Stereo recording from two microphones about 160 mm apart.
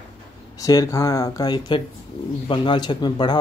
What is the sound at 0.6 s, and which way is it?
A man's voice, 20° left (ahead or behind).